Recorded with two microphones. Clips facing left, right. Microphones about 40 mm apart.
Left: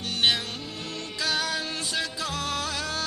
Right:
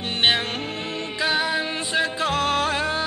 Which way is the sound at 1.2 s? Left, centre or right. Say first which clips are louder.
Right 5 dB; right.